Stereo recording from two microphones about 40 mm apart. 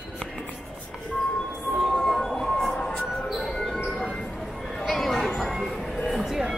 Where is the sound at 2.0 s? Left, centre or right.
Centre.